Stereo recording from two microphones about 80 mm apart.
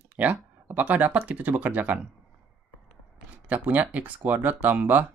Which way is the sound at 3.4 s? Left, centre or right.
Centre.